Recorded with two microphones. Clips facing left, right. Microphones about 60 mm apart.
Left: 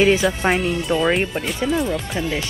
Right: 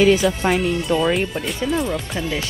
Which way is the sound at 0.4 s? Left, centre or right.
Centre.